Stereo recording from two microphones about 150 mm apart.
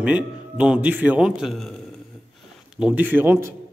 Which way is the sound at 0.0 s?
5° right (ahead or behind).